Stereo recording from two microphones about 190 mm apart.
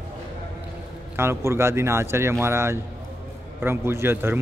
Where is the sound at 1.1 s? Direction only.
15° right (ahead or behind).